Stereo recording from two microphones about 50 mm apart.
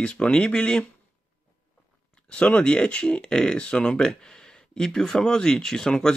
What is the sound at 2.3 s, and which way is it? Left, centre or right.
Speech, left.